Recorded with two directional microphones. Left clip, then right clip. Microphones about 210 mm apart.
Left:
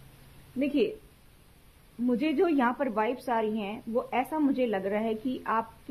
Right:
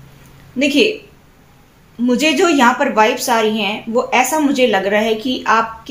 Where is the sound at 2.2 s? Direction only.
45° left (ahead or behind).